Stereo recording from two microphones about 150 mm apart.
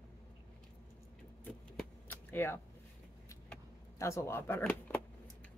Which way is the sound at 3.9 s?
20° left (ahead or behind).